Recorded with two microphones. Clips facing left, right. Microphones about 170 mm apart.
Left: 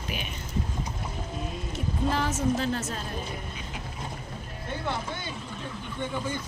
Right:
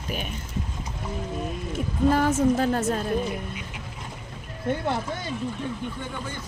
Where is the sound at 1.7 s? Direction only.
50° right (ahead or behind).